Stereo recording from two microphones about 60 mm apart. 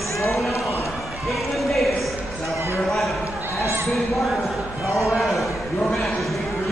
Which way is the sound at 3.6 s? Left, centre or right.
Right.